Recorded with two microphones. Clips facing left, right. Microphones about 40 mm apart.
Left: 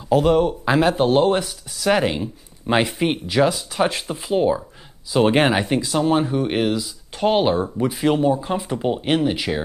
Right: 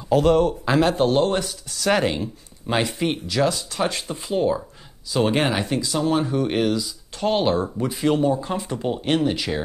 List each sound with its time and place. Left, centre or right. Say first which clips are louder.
0.1 s speech: left 1 dB; centre
3.0 s speech: left 3 dB; left